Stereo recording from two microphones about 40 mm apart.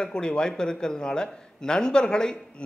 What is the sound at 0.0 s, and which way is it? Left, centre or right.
A woman's voice, left.